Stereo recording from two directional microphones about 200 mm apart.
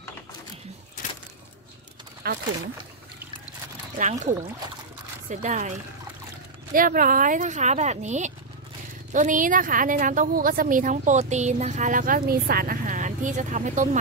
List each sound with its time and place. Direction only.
2.2 s speech: 50° right (ahead or behind)
4.0 s a woman's voice: 35° right (ahead or behind)
6.7 s a woman's voice: 45° right (ahead or behind)